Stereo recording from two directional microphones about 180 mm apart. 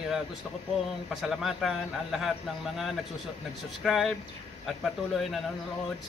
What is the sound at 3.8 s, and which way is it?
Speech, centre (ahead or behind).